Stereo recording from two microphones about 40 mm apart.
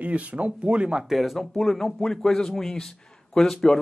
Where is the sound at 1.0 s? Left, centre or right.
Centre.